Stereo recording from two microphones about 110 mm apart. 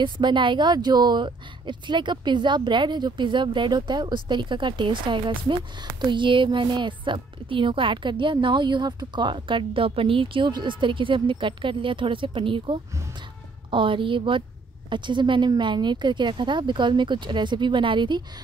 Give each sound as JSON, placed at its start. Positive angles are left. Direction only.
{"t": 0.0, "sound": "speech", "side_deg": -45}